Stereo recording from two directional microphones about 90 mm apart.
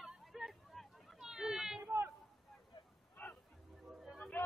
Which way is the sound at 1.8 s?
30° right (ahead or behind).